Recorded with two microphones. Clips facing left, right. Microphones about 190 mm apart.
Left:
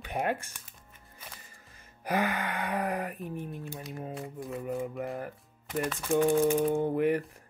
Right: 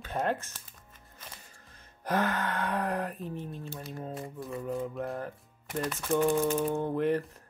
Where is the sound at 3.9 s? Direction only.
Centre (ahead or behind).